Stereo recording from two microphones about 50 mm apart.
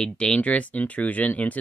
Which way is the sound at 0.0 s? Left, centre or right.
Centre.